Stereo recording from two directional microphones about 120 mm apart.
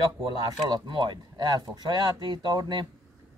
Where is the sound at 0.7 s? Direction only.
40° right (ahead or behind).